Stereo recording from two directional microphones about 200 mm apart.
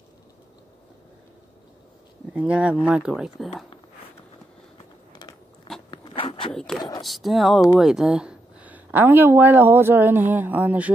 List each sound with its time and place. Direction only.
2.3 s speech: 5° right (ahead or behind)
5.9 s zipper: 25° left (ahead or behind)
6.5 s speech: 5° left (ahead or behind)